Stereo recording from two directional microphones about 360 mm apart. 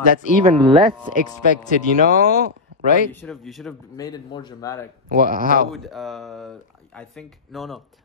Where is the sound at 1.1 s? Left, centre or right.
Left.